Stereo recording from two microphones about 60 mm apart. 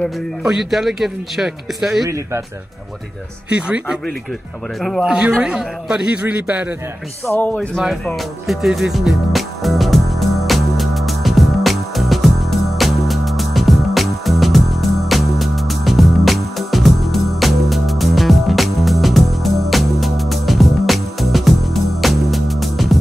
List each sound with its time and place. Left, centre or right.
0.5 s speech: centre
2.0 s a man's voice: right
3.4 s a man's voice: centre
4.7 s speech: centre
5.0 s a man's voice: centre
6.1 s a man's voice: right
7.5 s speech: centre
8.2 s music: centre